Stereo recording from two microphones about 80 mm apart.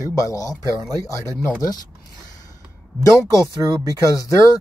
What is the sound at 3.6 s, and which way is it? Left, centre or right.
Speech, right.